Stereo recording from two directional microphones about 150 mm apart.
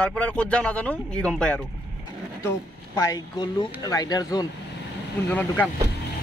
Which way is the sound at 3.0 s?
25° left (ahead or behind).